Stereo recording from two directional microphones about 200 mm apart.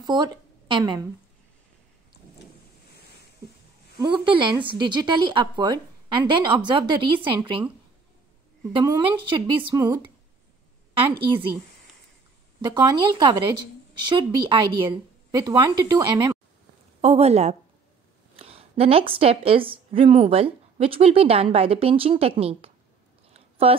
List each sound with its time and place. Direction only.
0.0 s speech: 20° right (ahead or behind)
4.0 s a woman's voice: 25° right (ahead or behind)
8.7 s a woman's voice: 20° right (ahead or behind)
12.6 s a woman's voice: 20° right (ahead or behind)
17.0 s a woman's voice: 30° right (ahead or behind)
23.3 s a sound: 30° right (ahead or behind)